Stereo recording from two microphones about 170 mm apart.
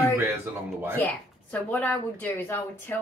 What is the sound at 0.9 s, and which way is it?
Speech, 10° left (ahead or behind).